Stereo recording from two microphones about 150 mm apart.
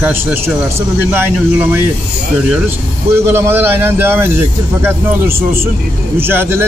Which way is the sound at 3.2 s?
15° right (ahead or behind).